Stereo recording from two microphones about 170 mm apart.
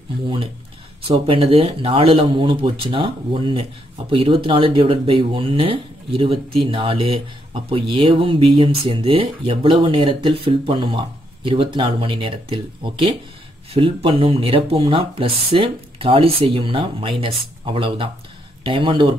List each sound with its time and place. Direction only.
1.0 s speech: 30° right (ahead or behind)